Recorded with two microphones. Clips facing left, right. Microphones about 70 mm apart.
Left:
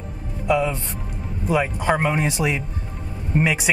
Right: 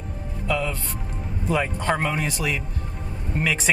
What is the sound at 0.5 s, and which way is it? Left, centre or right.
Speech, centre.